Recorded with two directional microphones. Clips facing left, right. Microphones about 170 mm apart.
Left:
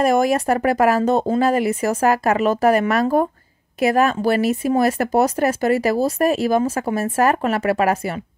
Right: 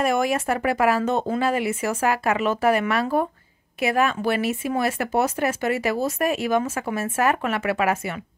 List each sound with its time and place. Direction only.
0.0 s speech: 40° left (ahead or behind)